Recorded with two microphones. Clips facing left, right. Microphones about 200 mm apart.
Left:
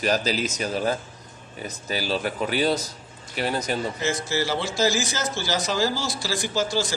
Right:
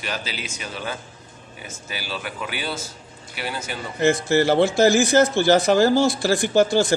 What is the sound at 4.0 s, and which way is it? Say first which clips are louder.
Speech: right 8 dB; 60° right (ahead or behind).